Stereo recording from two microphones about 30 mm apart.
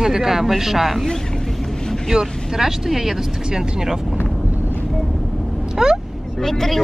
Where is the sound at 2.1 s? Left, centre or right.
Right.